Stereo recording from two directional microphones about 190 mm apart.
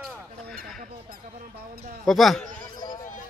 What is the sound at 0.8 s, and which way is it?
Squeak, 45° right (ahead or behind).